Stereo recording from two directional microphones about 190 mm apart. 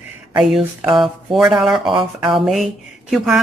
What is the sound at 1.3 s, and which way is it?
Speech, 5° right (ahead or behind).